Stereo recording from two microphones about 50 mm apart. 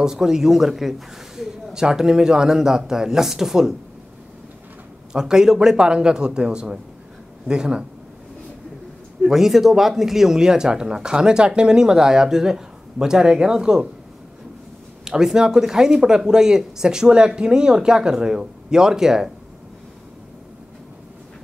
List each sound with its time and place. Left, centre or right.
0.0 s speech: centre
5.1 s speech: centre
9.2 s speech: centre
15.0 s speech: centre